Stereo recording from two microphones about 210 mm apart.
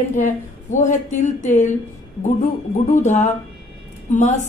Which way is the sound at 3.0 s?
35° left (ahead or behind).